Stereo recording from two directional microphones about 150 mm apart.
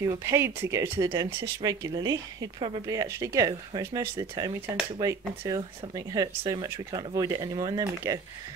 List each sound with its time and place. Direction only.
0.0 s speech: 20° right (ahead or behind)
5.5 s speech: 25° right (ahead or behind)